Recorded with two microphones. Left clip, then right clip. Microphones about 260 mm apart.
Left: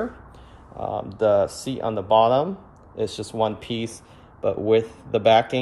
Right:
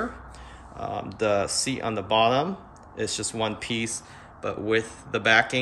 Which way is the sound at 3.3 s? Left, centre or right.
Centre.